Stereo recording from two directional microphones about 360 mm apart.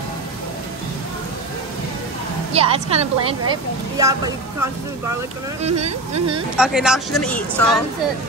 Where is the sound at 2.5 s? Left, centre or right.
Centre.